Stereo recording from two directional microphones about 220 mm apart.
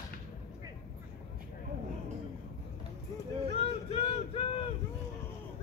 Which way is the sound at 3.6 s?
25° left (ahead or behind).